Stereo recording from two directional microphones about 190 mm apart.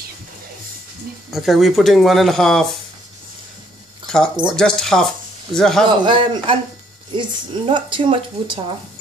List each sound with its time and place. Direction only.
1.3 s speech: centre (ahead or behind)
4.1 s speech: centre (ahead or behind)
5.9 s speech: 25° right (ahead or behind)